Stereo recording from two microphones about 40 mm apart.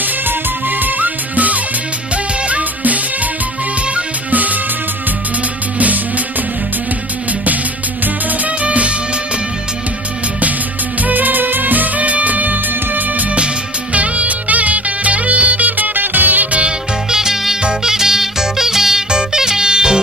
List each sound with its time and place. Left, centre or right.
0.0 s music: right
5.8 s music: right
8.6 s music: right
11.0 s music: right
17.1 s music: centre